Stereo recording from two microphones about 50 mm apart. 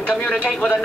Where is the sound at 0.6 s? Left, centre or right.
Centre.